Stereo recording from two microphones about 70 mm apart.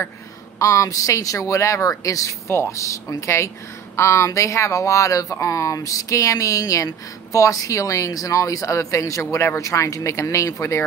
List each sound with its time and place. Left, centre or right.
0.6 s speech: left
2.4 s speech: left